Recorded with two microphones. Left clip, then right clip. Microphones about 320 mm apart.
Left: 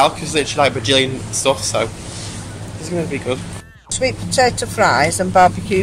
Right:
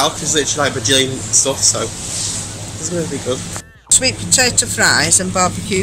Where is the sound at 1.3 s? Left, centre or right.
Centre.